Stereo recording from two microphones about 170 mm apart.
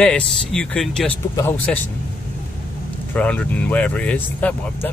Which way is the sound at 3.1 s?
10° left (ahead or behind).